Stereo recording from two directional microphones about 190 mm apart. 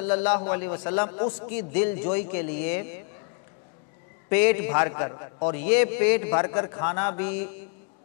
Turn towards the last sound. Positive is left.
turn(degrees=10)  # may be behind; listen again after turning